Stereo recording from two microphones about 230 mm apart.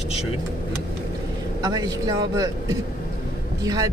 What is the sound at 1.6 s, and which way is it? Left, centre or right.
A man's voice, centre.